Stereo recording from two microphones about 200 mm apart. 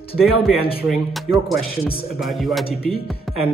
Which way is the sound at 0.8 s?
Centre (ahead or behind).